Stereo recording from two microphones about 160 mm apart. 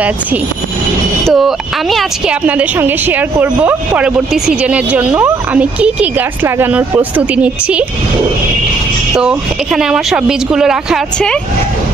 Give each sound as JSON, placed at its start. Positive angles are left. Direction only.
{"t": 1.2, "sound": "speech", "side_deg": 0}
{"t": 9.1, "sound": "speech", "side_deg": -5}